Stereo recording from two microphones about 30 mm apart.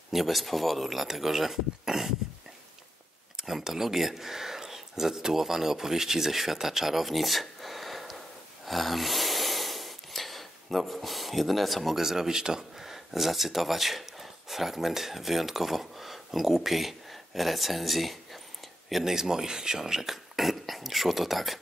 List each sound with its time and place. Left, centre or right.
0.1 s speech: centre
3.3 s speech: centre
7.1 s a sound: centre
12.0 s speech: centre
12.7 s speech: centre
19.1 s speech: centre
20.3 s speech: centre